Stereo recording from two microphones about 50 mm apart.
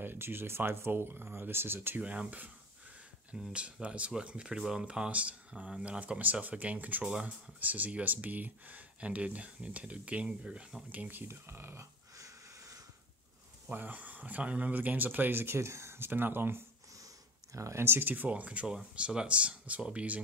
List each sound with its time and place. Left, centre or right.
0.0 s speech: right
2.0 s speech: right
3.3 s speech: centre
10.9 s speech: right
11.2 s speech: right
13.7 s speech: right
17.5 s speech: right
17.8 s speech: right
18.3 s speech: right